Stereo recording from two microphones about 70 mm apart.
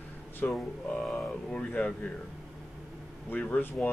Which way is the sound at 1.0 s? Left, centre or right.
Centre.